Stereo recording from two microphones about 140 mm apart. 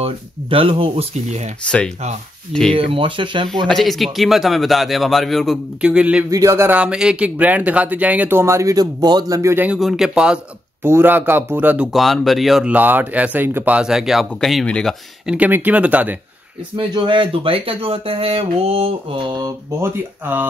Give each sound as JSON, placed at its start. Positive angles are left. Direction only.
{"t": 0.0, "sound": "speech", "side_deg": -40}
{"t": 1.6, "sound": "speech", "side_deg": 10}
{"t": 2.7, "sound": "speech", "side_deg": -40}
{"t": 3.6, "sound": "speech", "side_deg": 0}
{"t": 6.3, "sound": "speech", "side_deg": -20}
{"t": 9.8, "sound": "speech", "side_deg": 0}
{"t": 11.9, "sound": "speech", "side_deg": 0}
{"t": 12.7, "sound": "speech", "side_deg": -15}
{"t": 15.2, "sound": "speech", "side_deg": -10}
{"t": 16.7, "sound": "speech", "side_deg": -35}
{"t": 19.8, "sound": "speech", "side_deg": -15}